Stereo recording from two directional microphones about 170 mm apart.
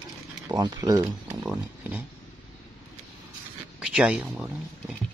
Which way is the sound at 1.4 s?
10° right (ahead or behind).